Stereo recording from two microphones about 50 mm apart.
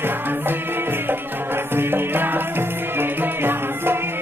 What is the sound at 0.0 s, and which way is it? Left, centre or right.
Music, right.